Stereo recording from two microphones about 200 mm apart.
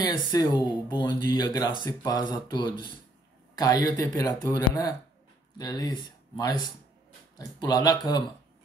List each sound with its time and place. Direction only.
0.0 s speech: 20° left (ahead or behind)